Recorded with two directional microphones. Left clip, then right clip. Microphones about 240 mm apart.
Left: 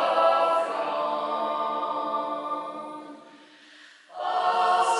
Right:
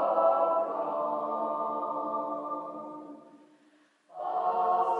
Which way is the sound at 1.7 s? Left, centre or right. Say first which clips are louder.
Left 4 dB; right.